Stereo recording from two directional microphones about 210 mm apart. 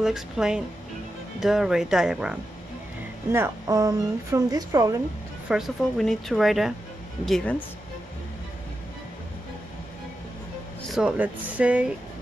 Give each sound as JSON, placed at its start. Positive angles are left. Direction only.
{"t": 0.0, "sound": "a woman's voice", "side_deg": 0}
{"t": 5.5, "sound": "speech", "side_deg": 0}
{"t": 10.9, "sound": "a woman's voice", "side_deg": -5}